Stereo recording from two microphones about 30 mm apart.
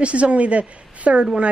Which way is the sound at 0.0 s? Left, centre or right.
Right.